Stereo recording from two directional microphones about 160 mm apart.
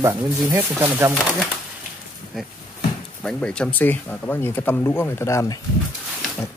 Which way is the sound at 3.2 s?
5° left (ahead or behind).